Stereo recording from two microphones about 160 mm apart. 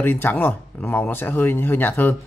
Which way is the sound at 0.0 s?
10° left (ahead or behind).